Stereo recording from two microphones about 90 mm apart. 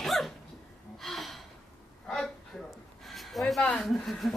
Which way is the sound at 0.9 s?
Centre (ahead or behind).